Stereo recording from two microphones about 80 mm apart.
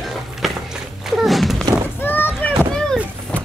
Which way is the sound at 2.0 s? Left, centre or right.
Left.